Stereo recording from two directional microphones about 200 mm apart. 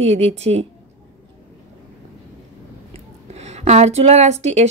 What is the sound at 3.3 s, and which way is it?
Speech, 35° right (ahead or behind).